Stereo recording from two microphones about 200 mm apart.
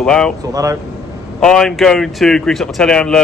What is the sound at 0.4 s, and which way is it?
Speech, 15° right (ahead or behind).